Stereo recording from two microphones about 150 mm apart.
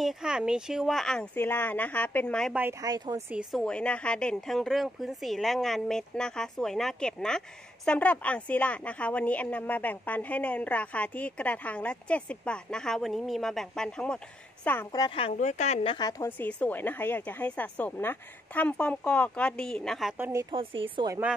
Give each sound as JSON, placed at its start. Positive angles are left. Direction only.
{"t": 0.0, "sound": "a woman's voice", "side_deg": -5}
{"t": 2.8, "sound": "a woman's voice", "side_deg": -25}
{"t": 3.5, "sound": "a woman's voice", "side_deg": 5}
{"t": 14.9, "sound": "a woman's voice", "side_deg": 30}
{"t": 15.3, "sound": "a woman's voice", "side_deg": 50}
{"t": 16.1, "sound": "speech", "side_deg": 15}
{"t": 20.5, "sound": "a woman's voice", "side_deg": -35}